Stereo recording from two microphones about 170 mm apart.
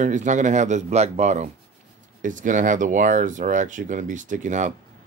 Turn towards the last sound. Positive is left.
turn(degrees=-45)  # may be behind; listen again after turning